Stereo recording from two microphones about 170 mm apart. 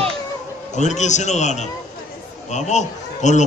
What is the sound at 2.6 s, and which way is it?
Speech, 45° left (ahead or behind).